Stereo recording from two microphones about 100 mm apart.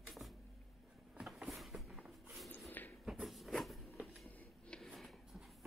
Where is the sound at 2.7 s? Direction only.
20° left (ahead or behind).